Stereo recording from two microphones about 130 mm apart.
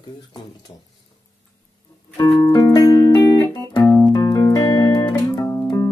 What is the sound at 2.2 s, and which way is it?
Music, 30° left (ahead or behind).